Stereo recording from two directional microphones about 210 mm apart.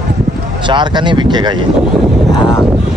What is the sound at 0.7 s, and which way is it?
Speech, 20° right (ahead or behind).